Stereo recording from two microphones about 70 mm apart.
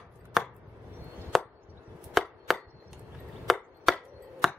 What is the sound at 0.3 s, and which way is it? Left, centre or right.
Chopping, centre.